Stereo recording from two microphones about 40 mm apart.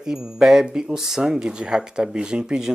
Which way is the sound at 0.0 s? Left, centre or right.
Centre.